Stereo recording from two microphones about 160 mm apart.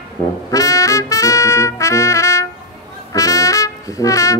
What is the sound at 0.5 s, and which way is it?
Trumpet, 20° left (ahead or behind).